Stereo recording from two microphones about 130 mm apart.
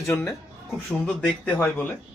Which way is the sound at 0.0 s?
20° left (ahead or behind).